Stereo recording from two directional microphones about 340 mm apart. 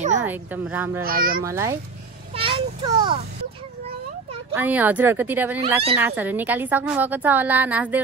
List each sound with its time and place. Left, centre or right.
0.2 s a woman's voice: centre
1.0 s a child's voice: right
1.4 s a child's voice: centre
4.6 s a woman's voice: centre
5.6 s a child's voice: centre
5.9 s a woman's voice: centre